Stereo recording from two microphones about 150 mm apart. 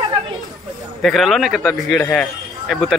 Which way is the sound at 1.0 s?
Centre (ahead or behind).